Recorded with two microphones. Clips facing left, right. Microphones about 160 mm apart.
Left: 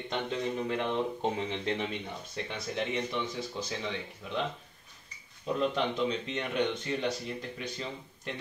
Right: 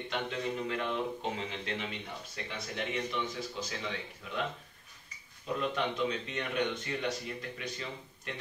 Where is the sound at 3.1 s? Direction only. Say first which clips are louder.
Left 2 dB; 25° left (ahead or behind).